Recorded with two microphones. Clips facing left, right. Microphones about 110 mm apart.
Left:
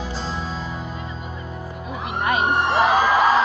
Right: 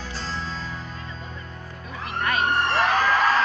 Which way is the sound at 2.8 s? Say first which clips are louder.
Left 5 dB; 10° left (ahead or behind).